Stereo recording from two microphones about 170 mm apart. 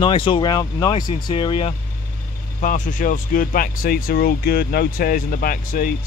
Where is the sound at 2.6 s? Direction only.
50° left (ahead or behind).